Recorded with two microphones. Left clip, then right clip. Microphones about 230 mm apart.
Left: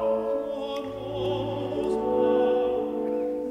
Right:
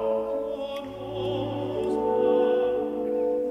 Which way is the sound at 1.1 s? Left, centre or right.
Left.